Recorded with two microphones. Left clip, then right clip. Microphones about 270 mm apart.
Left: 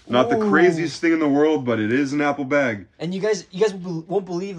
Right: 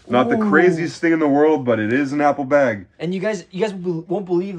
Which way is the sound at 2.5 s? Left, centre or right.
Centre.